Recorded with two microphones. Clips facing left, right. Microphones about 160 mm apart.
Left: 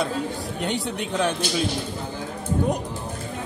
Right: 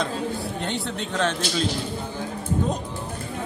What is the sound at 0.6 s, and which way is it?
Speech, 15° left (ahead or behind).